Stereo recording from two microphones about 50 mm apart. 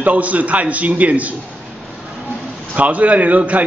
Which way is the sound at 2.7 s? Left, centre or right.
Right.